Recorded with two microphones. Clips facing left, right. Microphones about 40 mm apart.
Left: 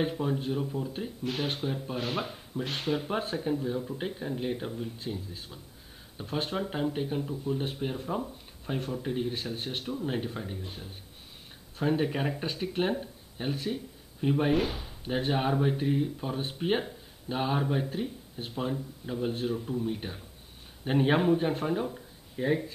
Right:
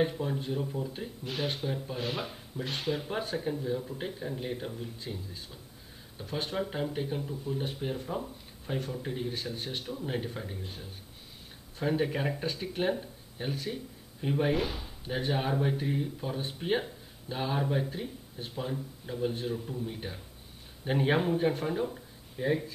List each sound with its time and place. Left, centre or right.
0.2 s speech: centre
1.4 s speech: left
2.6 s speech: left
3.1 s speech: centre
11.8 s speech: centre
14.5 s speech: left
14.8 s speech: centre
17.8 s speech: left